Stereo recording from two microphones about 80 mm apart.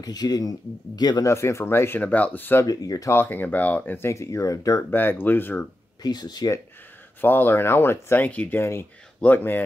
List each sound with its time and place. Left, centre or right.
0.0 s speech: left
1.2 s speech: left
2.6 s speech: left
3.1 s speech: left
4.1 s speech: left
4.9 s speech: left
6.0 s speech: left
7.2 s speech: left